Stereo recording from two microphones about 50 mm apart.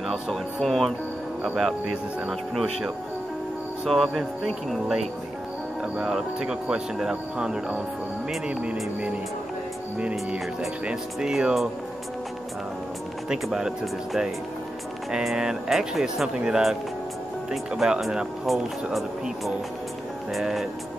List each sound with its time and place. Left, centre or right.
0.1 s speech: centre
1.4 s speech: centre
3.9 s speech: centre
4.6 s speech: centre
6.0 s speech: centre
9.9 s speech: right
13.3 s speech: centre
18.4 s speech: centre
20.3 s speech: centre